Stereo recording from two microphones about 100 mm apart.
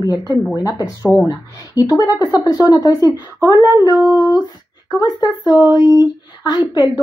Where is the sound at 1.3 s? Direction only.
40° left (ahead or behind).